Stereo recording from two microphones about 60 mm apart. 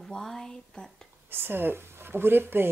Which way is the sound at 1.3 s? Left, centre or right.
Right.